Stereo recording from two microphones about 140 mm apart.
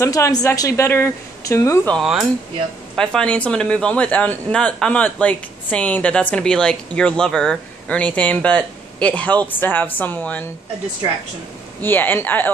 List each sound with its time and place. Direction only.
0.0 s speech: 25° left (ahead or behind)
2.0 s speech: 5° right (ahead or behind); by 10.5 s 10° left (ahead or behind)
11.8 s speech: 15° left (ahead or behind)